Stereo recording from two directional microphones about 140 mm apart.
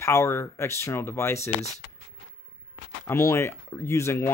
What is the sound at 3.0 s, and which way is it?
Speech, 20° left (ahead or behind).